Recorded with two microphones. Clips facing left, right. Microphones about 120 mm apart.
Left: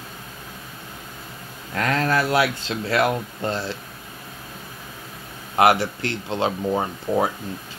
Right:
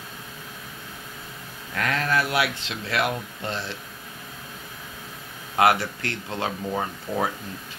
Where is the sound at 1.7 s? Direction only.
35° left (ahead or behind).